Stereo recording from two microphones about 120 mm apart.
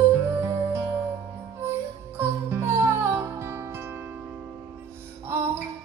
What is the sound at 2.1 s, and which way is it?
Music, 20° right (ahead or behind).